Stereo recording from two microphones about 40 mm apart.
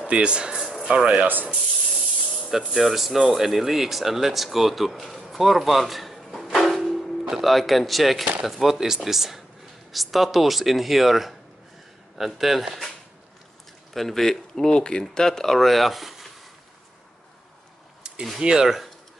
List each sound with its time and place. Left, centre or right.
0.0 s speech: right
1.2 s speech: right
2.5 s speech: centre
6.6 s music: centre
8.5 s speech: centre
13.9 s speech: centre
18.0 s a sound: centre
18.4 s speech: centre